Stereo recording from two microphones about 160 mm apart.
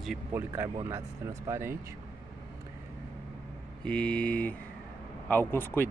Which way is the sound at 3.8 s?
5° left (ahead or behind).